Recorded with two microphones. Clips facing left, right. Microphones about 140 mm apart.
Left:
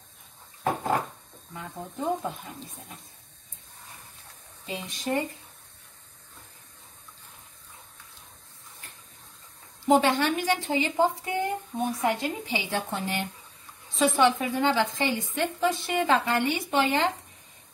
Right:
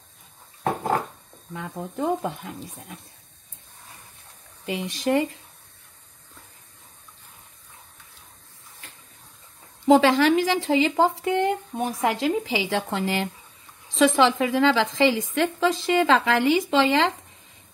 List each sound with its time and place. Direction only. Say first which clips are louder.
4.6 s speech: right 6 dB; 80° right
8.8 s bathtub: right 3 dB; 90° right
9.8 s speech: right 5 dB; 90° right